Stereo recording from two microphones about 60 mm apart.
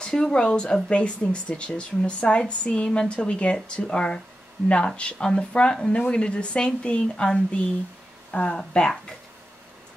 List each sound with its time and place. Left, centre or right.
0.0 s speech: centre